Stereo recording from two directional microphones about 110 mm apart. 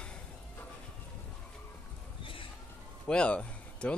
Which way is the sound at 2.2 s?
55° left (ahead or behind).